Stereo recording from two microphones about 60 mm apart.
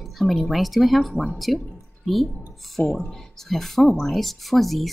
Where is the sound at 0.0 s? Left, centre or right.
Centre.